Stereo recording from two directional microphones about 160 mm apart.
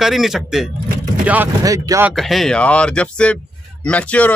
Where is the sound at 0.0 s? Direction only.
Centre (ahead or behind).